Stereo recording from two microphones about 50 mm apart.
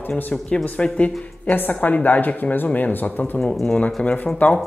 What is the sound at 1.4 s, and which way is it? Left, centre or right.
Speech, left.